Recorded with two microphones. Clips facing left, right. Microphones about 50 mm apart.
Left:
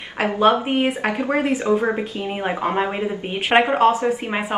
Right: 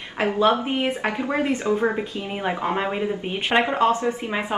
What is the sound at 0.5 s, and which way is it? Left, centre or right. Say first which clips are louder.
Speech: left 3 dB; left.